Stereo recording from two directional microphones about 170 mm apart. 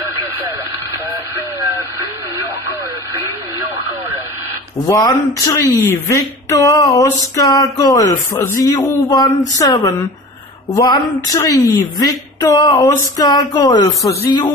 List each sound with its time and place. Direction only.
1.3 s radio: 15° right (ahead or behind)
4.8 s a woman's voice: 20° left (ahead or behind)